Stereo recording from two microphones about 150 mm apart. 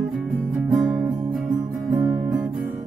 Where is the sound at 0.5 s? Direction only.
5° right (ahead or behind).